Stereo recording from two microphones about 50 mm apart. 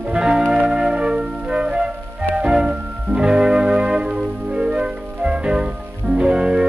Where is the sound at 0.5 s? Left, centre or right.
Centre.